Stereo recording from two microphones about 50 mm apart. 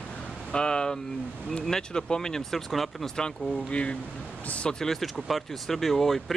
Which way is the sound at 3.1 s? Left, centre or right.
Centre.